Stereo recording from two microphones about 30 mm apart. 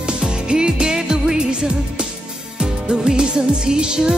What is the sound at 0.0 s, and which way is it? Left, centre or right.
Music, right.